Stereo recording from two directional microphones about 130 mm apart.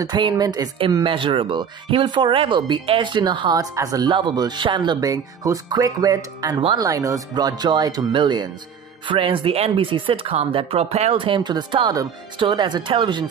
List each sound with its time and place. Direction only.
0.0 s speech: 35° right (ahead or behind)